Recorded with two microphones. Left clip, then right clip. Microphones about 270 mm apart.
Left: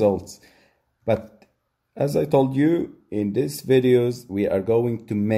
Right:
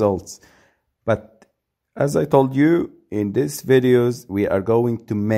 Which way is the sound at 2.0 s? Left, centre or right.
Right.